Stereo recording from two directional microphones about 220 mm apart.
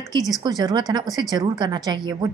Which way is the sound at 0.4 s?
20° right (ahead or behind).